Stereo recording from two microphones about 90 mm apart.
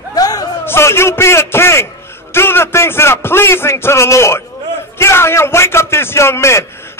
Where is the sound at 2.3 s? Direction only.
30° left (ahead or behind).